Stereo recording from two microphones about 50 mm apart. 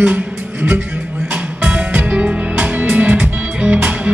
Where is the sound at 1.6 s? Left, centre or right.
Right.